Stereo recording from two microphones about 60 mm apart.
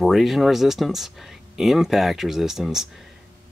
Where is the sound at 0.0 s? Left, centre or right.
Centre.